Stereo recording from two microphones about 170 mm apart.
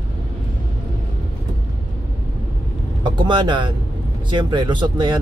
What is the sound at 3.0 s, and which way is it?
Speech, 25° right (ahead or behind).